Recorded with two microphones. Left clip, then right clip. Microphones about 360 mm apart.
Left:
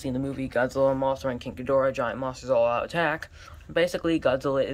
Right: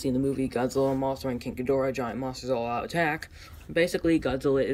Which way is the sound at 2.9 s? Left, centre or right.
Centre.